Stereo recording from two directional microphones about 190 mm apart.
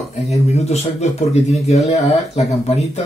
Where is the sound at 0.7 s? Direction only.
35° left (ahead or behind).